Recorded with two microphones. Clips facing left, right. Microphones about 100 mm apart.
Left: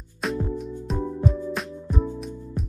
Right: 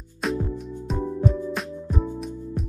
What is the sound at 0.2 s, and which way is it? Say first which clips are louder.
Music: even; centre (ahead or behind).